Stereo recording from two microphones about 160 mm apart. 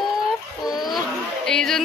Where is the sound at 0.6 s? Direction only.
Centre (ahead or behind).